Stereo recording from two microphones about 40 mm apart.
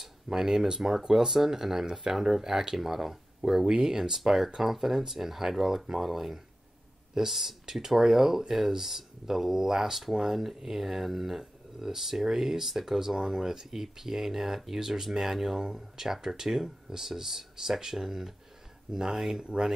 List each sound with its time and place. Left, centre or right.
0.0 s speech: centre
19.4 s speech: right